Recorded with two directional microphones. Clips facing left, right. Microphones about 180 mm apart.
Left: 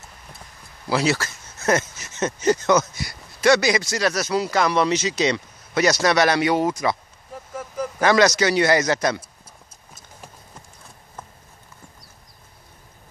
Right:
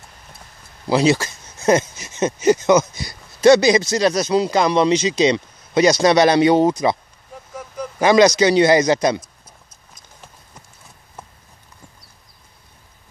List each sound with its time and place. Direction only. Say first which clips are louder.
0.8 s speech: right 5 dB; 20° right (ahead or behind)
7.5 s a sound: left 1 dB; 5° left (ahead or behind)
8.0 s speech: right 5 dB; 15° right (ahead or behind)